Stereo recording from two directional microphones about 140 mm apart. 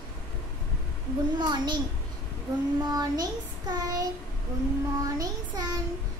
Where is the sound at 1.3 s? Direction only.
30° right (ahead or behind).